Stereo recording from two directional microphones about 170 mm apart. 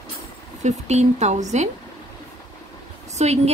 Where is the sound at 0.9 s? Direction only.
40° right (ahead or behind).